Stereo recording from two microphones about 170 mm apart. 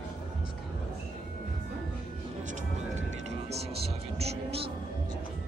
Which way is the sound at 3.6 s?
70° right (ahead or behind).